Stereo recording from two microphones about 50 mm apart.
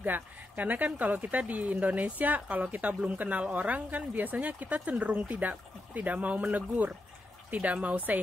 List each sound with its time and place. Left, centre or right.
0.0 s speech: right